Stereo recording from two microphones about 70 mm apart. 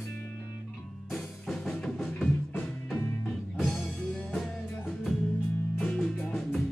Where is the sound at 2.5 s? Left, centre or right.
Left.